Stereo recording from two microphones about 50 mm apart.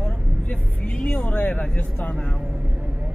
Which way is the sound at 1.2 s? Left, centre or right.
Left.